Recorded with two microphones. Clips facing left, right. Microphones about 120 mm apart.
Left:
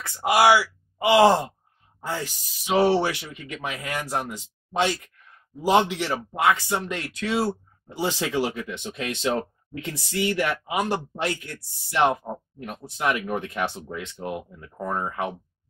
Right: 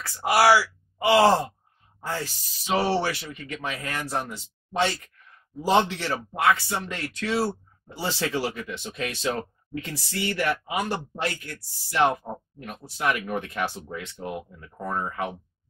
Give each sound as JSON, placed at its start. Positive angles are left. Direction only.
{"t": 0.0, "sound": "speech", "side_deg": 20}